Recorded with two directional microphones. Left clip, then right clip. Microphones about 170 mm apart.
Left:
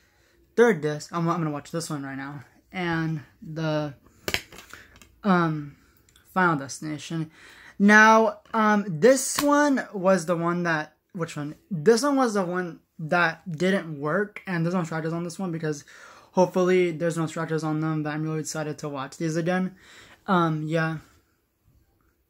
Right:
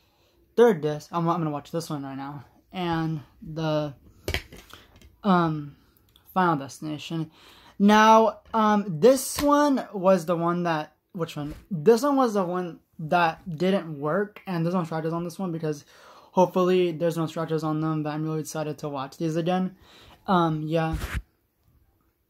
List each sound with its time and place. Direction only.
0.6 s speech: 25° left (ahead or behind)
4.2 s a sound: 20° right (ahead or behind)
5.2 s speech: 15° left (ahead or behind)